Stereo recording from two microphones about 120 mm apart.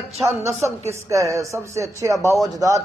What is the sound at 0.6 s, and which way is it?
Speech, 25° right (ahead or behind).